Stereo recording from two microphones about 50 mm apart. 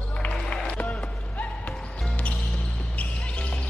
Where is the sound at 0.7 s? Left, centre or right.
Left.